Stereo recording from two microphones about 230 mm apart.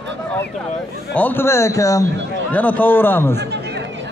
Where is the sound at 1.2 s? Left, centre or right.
Centre.